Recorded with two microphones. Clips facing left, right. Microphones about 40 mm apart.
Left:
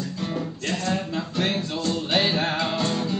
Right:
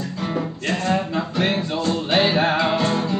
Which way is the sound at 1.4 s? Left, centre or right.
Centre.